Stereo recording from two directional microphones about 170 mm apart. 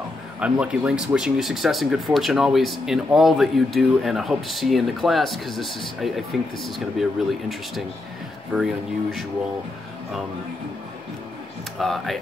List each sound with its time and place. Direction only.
0.4 s speech: 5° right (ahead or behind)
11.8 s speech: centre (ahead or behind)